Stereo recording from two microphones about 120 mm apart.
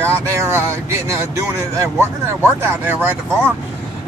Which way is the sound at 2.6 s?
15° right (ahead or behind).